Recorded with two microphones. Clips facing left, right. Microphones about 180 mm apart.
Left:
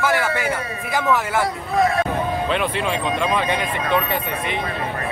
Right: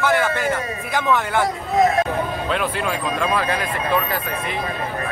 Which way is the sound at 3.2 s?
5° right (ahead or behind).